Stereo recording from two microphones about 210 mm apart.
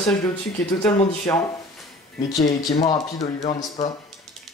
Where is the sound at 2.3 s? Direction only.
30° left (ahead or behind).